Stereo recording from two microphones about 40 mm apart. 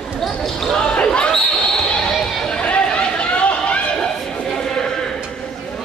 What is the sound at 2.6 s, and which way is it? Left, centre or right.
Run, left.